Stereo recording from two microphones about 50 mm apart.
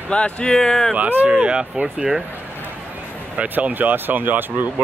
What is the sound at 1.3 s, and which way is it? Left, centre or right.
Speech, right.